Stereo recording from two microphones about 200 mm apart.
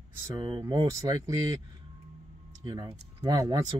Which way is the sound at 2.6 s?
20° right (ahead or behind).